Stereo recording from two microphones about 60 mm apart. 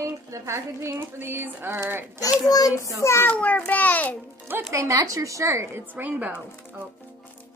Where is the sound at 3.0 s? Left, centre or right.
Left.